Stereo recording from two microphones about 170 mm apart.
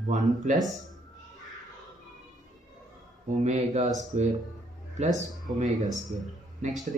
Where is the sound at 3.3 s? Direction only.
45° right (ahead or behind).